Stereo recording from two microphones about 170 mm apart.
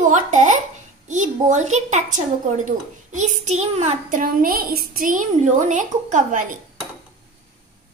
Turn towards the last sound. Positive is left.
turn(degrees=-50)  # may be behind; listen again after turning